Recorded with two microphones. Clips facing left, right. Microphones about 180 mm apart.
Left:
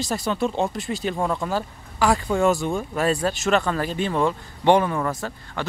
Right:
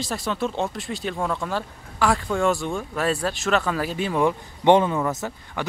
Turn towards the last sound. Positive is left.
turn(degrees=-15)  # may be behind; listen again after turning